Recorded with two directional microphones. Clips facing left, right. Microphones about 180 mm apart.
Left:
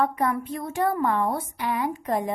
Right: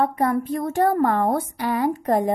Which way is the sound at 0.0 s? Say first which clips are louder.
Right 3 dB; 35° right (ahead or behind).